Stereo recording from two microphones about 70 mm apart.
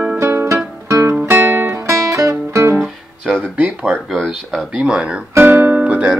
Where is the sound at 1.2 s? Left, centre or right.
Right.